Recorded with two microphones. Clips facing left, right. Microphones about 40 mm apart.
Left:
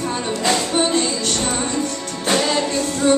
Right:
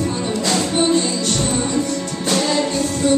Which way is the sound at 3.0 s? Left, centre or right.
Left.